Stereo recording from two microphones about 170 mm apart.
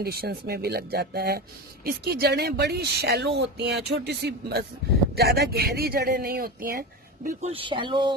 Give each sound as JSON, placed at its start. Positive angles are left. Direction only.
{"t": 0.0, "sound": "speech", "side_deg": -65}
{"t": 7.4, "sound": "speech", "side_deg": -30}